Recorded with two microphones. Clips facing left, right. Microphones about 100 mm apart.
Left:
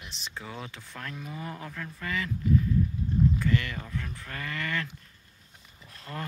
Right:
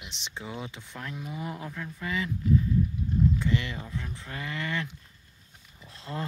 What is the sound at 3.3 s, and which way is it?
Speech, 20° right (ahead or behind).